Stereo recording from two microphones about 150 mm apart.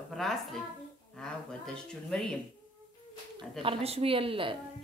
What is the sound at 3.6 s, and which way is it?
A woman's voice, 40° right (ahead or behind).